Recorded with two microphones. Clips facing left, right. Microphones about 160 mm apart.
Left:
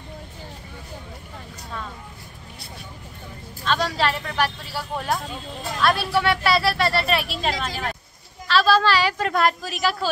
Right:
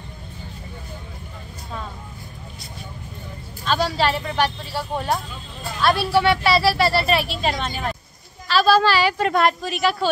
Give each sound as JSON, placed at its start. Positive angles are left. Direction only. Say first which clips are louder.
{"t": 3.6, "sound": "speech", "louder": "right 2 dB", "side_deg": -5}